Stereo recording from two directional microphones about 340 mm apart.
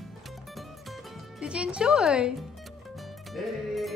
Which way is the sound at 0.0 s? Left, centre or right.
Centre.